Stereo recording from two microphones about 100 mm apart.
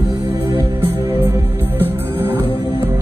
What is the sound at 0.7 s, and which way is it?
Music, 20° right (ahead or behind).